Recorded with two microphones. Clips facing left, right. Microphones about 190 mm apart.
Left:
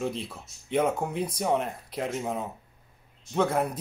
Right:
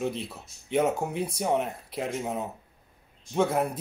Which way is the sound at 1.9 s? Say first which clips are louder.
Even; 5° right (ahead or behind).